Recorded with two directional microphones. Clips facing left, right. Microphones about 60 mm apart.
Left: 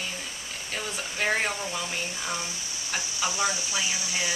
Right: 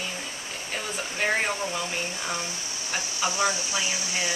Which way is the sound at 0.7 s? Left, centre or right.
Centre.